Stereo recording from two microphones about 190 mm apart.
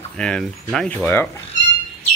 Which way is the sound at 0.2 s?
5° left (ahead or behind).